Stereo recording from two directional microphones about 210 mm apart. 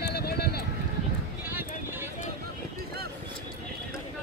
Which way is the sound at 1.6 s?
10° right (ahead or behind).